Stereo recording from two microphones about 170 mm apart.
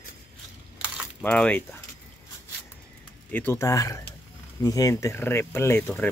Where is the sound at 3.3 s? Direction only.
15° left (ahead or behind).